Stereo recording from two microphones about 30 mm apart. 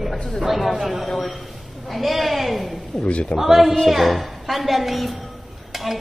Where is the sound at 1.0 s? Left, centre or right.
Centre.